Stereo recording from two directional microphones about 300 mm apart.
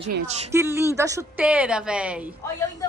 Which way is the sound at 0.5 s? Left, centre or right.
Centre.